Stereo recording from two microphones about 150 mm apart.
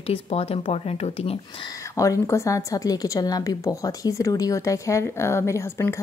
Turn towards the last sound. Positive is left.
turn(degrees=20)  # may be behind; listen again after turning